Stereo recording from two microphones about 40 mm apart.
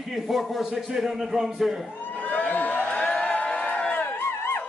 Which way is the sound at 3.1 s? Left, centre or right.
Left.